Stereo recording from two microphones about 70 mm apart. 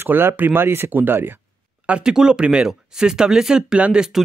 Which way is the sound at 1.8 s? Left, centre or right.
Centre.